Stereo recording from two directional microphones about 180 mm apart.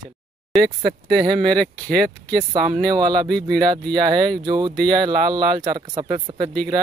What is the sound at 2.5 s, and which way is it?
Speech, 25° right (ahead or behind).